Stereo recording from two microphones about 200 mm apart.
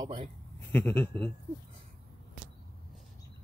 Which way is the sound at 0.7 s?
10° left (ahead or behind).